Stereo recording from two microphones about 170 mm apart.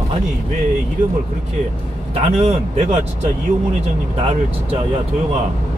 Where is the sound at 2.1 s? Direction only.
40° right (ahead or behind).